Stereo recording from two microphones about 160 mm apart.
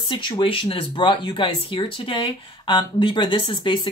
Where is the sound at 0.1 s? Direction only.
30° left (ahead or behind).